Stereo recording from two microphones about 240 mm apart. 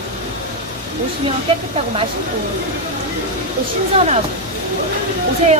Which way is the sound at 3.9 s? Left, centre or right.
Right.